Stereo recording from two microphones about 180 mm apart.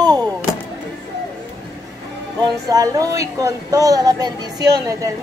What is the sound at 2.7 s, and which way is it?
A woman's voice, 20° right (ahead or behind).